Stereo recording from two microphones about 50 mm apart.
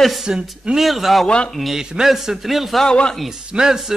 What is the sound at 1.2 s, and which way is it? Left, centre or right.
Speech, left.